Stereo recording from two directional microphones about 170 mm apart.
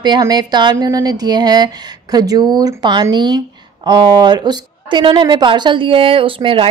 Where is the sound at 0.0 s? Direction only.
25° right (ahead or behind).